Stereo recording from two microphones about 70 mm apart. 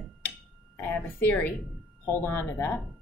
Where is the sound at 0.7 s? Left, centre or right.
Left.